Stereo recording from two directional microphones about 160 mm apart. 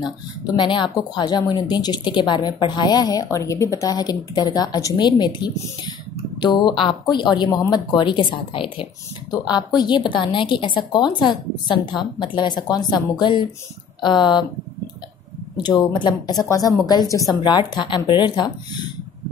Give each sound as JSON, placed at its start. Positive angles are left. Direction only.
{"t": 0.6, "sound": "speech", "side_deg": 30}
{"t": 15.5, "sound": "speech", "side_deg": 25}